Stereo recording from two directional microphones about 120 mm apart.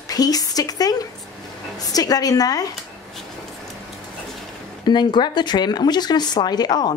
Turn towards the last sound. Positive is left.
turn(degrees=35)  # may be behind; listen again after turning